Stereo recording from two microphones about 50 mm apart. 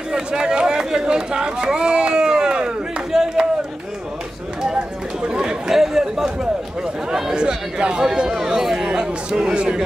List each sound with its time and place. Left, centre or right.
0.1 s run: centre
4.6 s chatter: centre
7.1 s a man's voice: centre